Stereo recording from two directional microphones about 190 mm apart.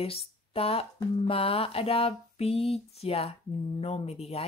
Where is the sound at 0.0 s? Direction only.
30° left (ahead or behind).